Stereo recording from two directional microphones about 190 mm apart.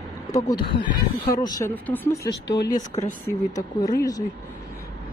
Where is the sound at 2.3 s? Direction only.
65° left (ahead or behind).